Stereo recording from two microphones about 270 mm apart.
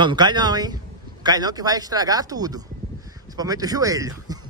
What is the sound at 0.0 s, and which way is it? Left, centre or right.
Speech, centre.